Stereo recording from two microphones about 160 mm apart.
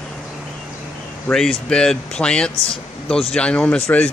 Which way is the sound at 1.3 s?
5° left (ahead or behind).